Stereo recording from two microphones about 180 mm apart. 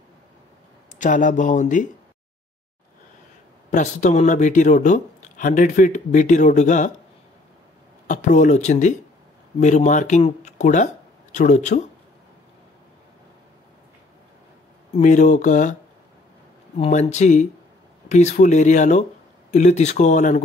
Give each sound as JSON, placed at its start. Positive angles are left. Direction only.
{"t": 1.0, "sound": "speech", "side_deg": 45}
{"t": 3.7, "sound": "speech", "side_deg": 45}
{"t": 8.1, "sound": "speech", "side_deg": 40}
{"t": 15.0, "sound": "speech", "side_deg": 45}
{"t": 16.7, "sound": "speech", "side_deg": 40}